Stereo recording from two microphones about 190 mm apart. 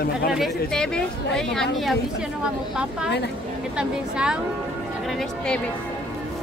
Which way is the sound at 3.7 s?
5° right (ahead or behind).